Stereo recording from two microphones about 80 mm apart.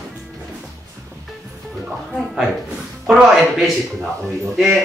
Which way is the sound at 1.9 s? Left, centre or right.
Centre.